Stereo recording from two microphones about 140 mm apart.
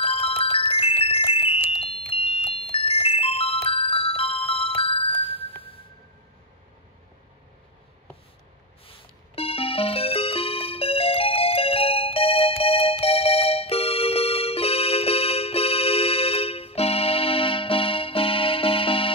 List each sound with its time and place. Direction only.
0.0 s glockenspiel: 45° left (ahead or behind)
8.8 s music: 45° left (ahead or behind)